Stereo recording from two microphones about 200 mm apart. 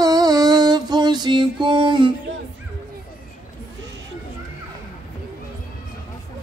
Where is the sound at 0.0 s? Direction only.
20° right (ahead or behind).